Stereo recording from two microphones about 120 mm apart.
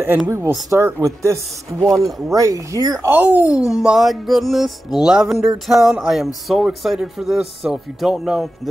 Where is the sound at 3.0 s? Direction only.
15° right (ahead or behind).